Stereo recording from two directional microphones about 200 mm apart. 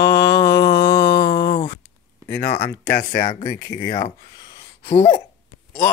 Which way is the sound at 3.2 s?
40° left (ahead or behind).